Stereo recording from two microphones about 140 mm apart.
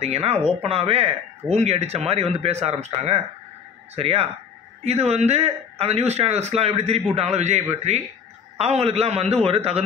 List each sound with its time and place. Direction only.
0.0 s speech: 45° right (ahead or behind)